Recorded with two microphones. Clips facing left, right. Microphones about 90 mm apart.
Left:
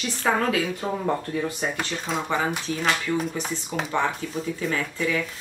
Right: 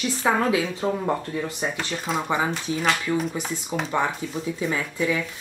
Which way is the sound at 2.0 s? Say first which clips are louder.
Right 2 dB; 15° right (ahead or behind).